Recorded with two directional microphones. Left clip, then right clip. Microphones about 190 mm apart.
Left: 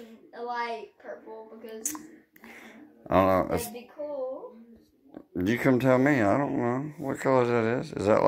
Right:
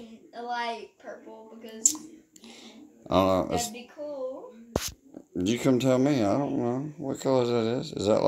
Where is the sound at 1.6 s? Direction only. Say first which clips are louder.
Right 9 dB; 20° right (ahead or behind).